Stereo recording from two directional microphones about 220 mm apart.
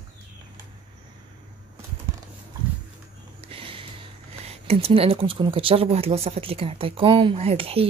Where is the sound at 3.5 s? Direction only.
25° right (ahead or behind).